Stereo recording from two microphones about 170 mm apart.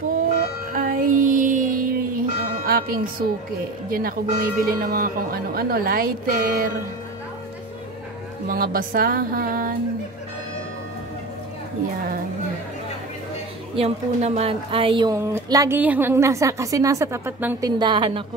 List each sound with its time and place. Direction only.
0.7 s music: 55° right (ahead or behind)
3.9 s speech: 55° right (ahead or behind)
8.5 s speech: 60° right (ahead or behind)
13.7 s a woman's voice: 35° right (ahead or behind)
15.1 s a woman's voice: 15° right (ahead or behind)
17.6 s a woman's voice: 25° right (ahead or behind)